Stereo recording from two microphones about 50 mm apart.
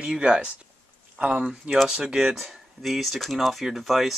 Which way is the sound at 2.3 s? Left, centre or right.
Centre.